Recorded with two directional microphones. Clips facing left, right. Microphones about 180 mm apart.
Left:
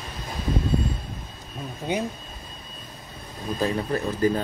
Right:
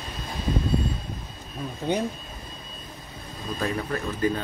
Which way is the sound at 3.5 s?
35° left (ahead or behind).